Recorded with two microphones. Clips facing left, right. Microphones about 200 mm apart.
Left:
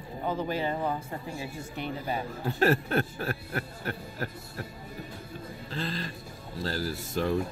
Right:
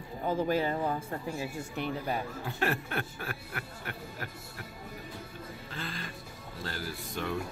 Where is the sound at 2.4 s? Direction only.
35° left (ahead or behind).